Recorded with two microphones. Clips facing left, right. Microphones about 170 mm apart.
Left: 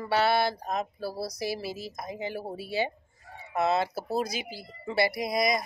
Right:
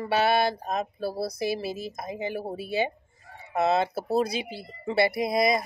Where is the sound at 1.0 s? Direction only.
55° right (ahead or behind).